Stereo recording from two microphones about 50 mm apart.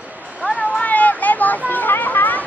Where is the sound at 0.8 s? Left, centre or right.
Left.